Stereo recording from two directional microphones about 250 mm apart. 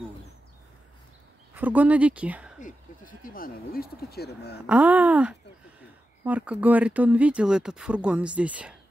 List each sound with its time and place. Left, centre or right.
1.5 s speech: centre
2.6 s speech: left
4.6 s speech: centre